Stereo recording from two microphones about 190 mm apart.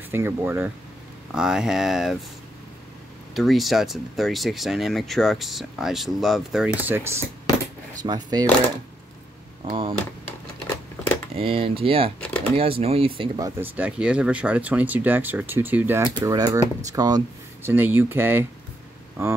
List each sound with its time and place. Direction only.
0.1 s speech: 15° right (ahead or behind)
3.3 s speech: centre (ahead or behind)
6.8 s speech: 10° right (ahead or behind)
9.7 s speech: 30° right (ahead or behind)
11.3 s speech: 30° right (ahead or behind)
13.4 s speech: 10° right (ahead or behind)